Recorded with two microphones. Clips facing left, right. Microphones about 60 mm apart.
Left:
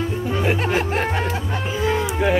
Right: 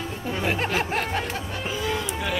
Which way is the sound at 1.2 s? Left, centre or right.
Left.